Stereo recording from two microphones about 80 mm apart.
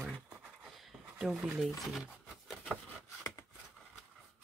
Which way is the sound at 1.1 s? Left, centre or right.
Centre.